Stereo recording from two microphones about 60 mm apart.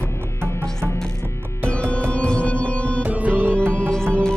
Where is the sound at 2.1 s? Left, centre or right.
Centre.